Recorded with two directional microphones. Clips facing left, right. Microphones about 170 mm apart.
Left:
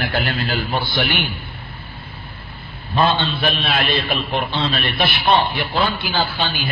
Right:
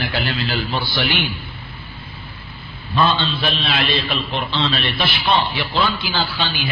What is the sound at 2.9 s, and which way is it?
A man's voice, 50° left (ahead or behind).